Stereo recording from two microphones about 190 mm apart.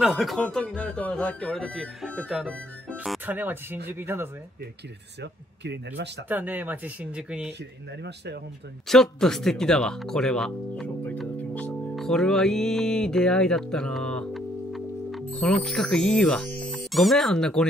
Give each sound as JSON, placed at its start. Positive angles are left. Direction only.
{"t": 0.0, "sound": "speech", "side_deg": 0}
{"t": 5.2, "sound": "speech", "side_deg": -65}
{"t": 6.2, "sound": "speech", "side_deg": -10}
{"t": 8.8, "sound": "speech", "side_deg": 0}